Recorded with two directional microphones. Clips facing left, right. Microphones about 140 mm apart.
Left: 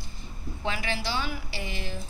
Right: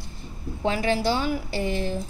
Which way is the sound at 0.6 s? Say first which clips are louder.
Right 8 dB; 45° right (ahead or behind).